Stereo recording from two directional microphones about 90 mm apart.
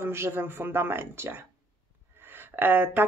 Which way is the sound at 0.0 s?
25° right (ahead or behind).